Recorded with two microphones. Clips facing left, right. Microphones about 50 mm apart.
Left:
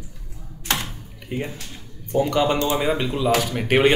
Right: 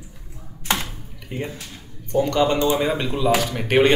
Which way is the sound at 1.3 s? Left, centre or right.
Centre.